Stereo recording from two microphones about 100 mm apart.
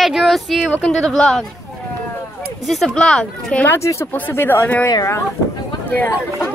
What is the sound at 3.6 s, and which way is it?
Speech, 25° left (ahead or behind).